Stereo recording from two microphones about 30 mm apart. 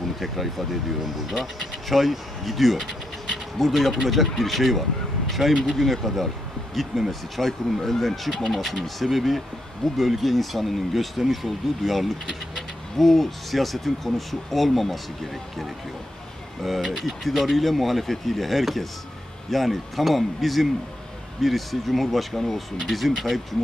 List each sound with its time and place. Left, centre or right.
0.2 s speech: centre
16.6 s speech: centre